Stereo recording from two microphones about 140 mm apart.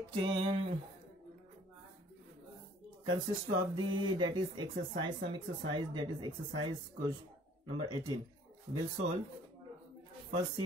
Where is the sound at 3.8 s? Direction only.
35° right (ahead or behind).